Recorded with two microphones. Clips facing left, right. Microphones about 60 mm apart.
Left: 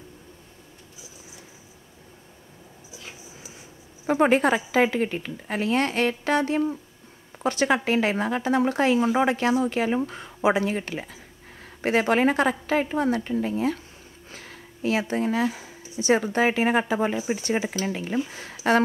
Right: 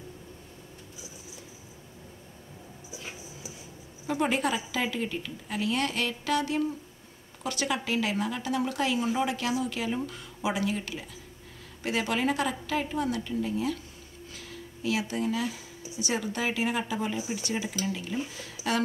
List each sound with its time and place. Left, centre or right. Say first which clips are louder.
4.1 s a woman's voice: left 8 dB; left